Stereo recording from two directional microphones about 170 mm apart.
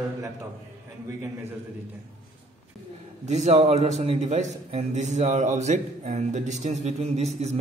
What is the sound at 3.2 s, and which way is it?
A man's voice, 45° right (ahead or behind).